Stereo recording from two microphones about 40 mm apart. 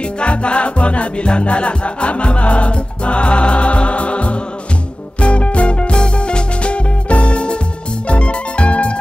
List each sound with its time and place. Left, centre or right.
0.2 s music: left